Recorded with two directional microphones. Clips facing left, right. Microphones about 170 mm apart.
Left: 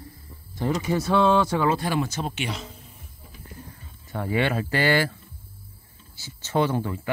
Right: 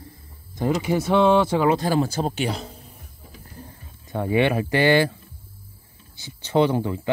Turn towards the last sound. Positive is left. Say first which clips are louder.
# right 4 dB
turn(degrees=-15)  # may be behind; listen again after turning